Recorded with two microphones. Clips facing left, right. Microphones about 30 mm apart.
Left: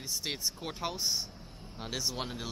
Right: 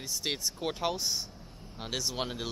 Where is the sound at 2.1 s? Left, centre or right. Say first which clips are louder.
Right 3 dB; centre.